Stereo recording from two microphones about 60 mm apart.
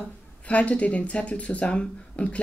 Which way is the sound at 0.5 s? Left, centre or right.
Left.